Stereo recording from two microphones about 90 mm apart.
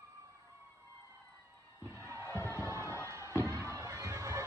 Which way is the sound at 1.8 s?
30° right (ahead or behind).